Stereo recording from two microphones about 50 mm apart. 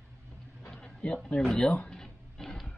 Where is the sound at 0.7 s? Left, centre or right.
Centre.